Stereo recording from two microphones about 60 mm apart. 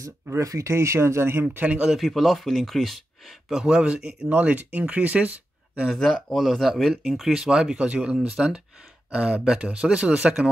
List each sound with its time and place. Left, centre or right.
0.4 s speech: right
1.7 s speech: centre
2.0 s speech: centre; by 5.3 s right
5.9 s speech: centre
7.3 s speech: centre